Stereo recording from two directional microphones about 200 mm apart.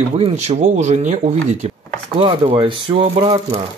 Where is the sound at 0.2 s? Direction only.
35° right (ahead or behind).